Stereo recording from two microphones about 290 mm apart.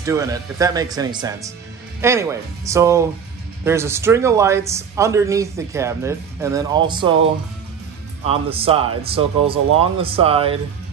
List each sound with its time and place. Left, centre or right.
0.0 s speech: centre
8.3 s speech: centre